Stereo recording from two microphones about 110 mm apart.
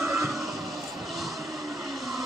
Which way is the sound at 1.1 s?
Centre (ahead or behind).